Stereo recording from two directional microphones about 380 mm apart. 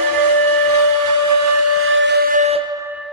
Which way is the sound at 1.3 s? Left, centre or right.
Right.